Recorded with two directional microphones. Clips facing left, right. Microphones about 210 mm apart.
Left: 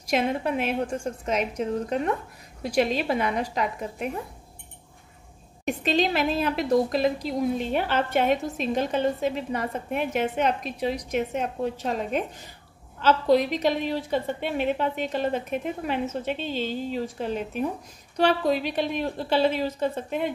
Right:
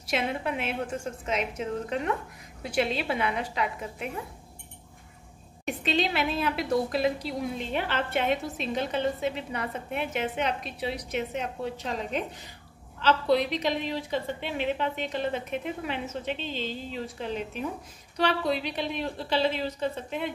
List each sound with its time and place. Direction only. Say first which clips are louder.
0.1 s a woman's voice: left 5 dB; 40° left (ahead or behind)
5.7 s a woman's voice: left 4 dB; 45° left (ahead or behind)